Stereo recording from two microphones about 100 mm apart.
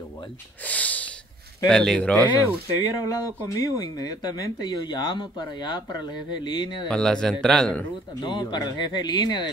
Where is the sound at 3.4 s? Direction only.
35° left (ahead or behind).